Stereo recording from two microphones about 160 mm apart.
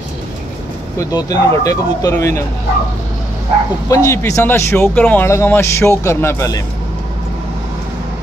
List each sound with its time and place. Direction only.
0.9 s speech: 25° left (ahead or behind)
3.9 s speech: 20° left (ahead or behind)